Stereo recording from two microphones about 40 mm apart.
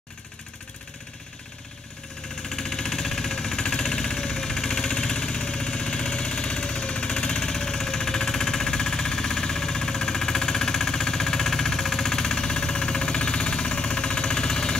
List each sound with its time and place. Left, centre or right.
2.5 s jackhammer: centre